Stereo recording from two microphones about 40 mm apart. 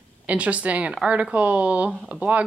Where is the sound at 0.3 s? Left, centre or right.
Right.